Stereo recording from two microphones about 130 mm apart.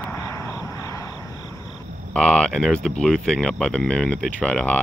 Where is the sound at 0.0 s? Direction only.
20° left (ahead or behind).